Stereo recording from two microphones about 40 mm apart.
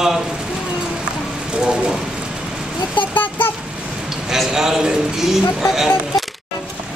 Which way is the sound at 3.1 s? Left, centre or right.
Left.